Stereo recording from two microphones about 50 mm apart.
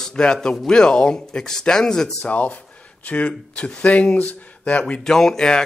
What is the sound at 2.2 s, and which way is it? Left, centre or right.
Speech, left.